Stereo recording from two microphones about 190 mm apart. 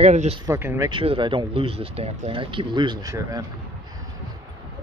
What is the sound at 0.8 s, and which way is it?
Speech, 25° right (ahead or behind).